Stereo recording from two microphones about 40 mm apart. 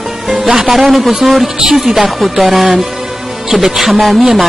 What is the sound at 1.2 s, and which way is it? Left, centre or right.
Speech, centre.